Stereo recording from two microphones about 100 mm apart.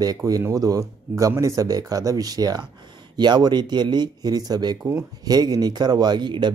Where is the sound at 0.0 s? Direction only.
40° right (ahead or behind).